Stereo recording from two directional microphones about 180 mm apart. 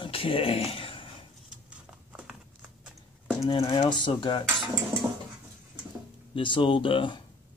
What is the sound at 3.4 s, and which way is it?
Speech, 30° left (ahead or behind).